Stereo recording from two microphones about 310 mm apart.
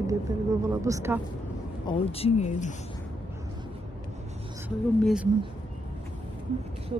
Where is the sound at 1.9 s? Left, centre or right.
Centre.